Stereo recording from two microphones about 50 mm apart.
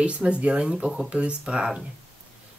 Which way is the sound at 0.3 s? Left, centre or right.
Right.